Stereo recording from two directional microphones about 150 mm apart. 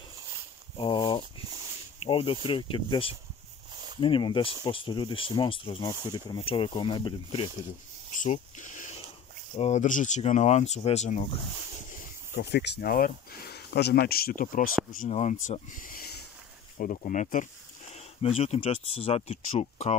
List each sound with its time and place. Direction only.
0.7 s a sound: 35° left (ahead or behind)
2.0 s speech: 35° left (ahead or behind)
3.7 s a sound: 30° right (ahead or behind)
4.0 s speech: 35° left (ahead or behind)
8.2 s a sound: 55° left (ahead or behind)
9.6 s speech: 50° left (ahead or behind)
12.4 s speech: 90° left; by 14.7 s 65° left (ahead or behind)
15.0 s speech: 50° left (ahead or behind)
17.9 s speech: 45° left (ahead or behind)